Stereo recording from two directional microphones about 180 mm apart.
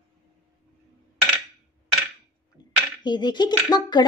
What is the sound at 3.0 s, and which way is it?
Speech, 25° left (ahead or behind).